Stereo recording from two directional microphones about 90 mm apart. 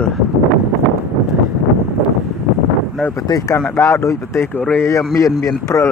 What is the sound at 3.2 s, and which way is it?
Speech, 40° left (ahead or behind).